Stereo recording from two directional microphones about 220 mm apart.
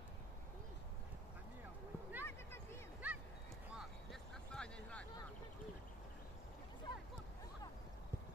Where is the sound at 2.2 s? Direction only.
10° left (ahead or behind).